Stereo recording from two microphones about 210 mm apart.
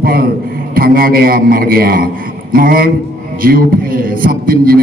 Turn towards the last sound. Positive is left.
turn(degrees=-45)  # may be behind; listen again after turning